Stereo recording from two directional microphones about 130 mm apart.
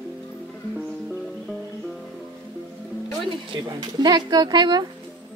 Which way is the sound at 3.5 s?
35° right (ahead or behind).